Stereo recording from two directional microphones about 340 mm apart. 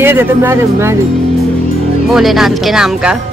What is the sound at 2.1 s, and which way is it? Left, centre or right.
Speech, centre.